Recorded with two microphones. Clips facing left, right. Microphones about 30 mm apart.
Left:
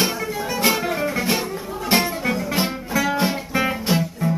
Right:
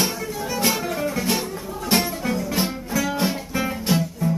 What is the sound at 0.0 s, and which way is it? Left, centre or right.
Music, centre.